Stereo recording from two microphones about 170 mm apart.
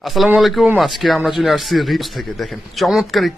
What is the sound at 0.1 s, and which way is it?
Speech, centre (ahead or behind).